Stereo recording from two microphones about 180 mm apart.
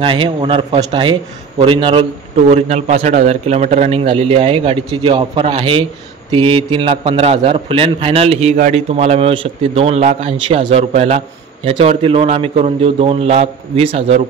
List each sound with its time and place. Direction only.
0.0 s a man's voice: 30° right (ahead or behind)